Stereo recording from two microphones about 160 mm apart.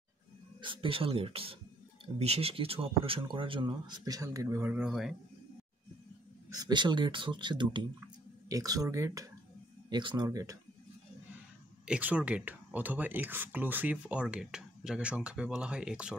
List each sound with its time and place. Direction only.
0.6 s speech: 30° right (ahead or behind)
4.6 s speech: 5° right (ahead or behind)
6.5 s speech: 25° right (ahead or behind)
11.8 s speech: 10° right (ahead or behind)